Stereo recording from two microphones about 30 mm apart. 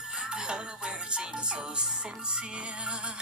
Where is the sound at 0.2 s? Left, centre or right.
Right.